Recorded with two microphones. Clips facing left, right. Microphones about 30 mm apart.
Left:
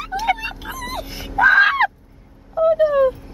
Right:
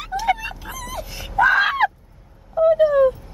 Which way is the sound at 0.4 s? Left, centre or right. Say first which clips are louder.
Left 3 dB; left.